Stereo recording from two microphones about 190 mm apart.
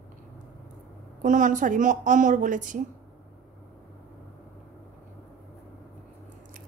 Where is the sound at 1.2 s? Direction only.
40° right (ahead or behind).